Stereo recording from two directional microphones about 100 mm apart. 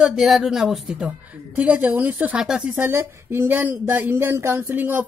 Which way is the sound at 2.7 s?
20° right (ahead or behind).